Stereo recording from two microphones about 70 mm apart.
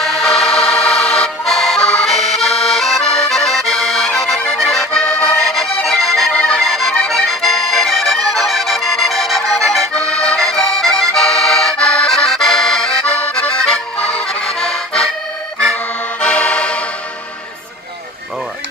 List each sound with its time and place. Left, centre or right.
0.0 s music: centre
4.5 s accordion: centre
6.3 s accordion: centre
6.6 s accordion: centre
13.1 s accordion: centre